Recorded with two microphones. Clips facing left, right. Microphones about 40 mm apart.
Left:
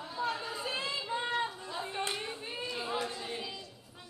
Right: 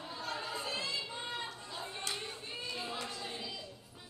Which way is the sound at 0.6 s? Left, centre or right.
Left.